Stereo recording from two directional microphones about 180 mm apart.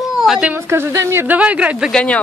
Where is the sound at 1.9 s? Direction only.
5° left (ahead or behind).